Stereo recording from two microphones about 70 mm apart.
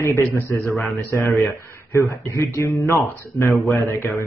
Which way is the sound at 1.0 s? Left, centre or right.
Left.